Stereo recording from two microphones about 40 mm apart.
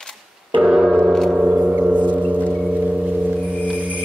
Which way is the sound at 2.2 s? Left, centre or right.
Right.